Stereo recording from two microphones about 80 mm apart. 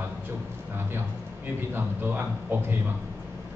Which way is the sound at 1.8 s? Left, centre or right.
Right.